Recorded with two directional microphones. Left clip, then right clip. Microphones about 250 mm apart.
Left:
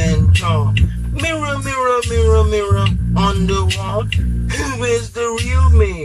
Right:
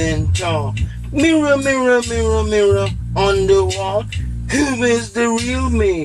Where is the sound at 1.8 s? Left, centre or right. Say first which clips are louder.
Left 3 dB; centre.